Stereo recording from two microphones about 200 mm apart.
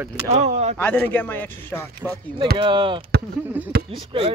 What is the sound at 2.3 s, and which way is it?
Speech, 25° right (ahead or behind).